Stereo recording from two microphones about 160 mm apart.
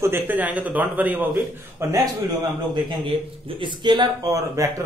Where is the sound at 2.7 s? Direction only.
35° right (ahead or behind).